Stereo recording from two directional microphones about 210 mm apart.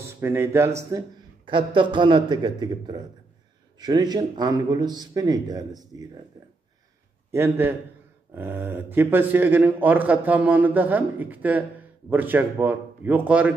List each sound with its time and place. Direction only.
0.0 s a man's voice: 10° right (ahead or behind)
7.2 s a man's voice: 10° right (ahead or behind)